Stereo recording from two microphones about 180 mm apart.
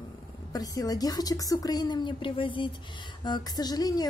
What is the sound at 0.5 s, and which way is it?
A woman's voice, 20° left (ahead or behind).